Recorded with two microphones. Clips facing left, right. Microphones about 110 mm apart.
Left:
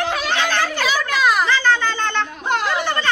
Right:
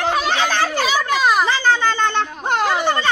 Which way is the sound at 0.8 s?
25° right (ahead or behind).